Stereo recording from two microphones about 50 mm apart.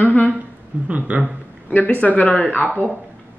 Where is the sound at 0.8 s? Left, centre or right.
Right.